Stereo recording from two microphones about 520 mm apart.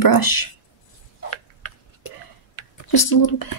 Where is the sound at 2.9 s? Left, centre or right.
Left.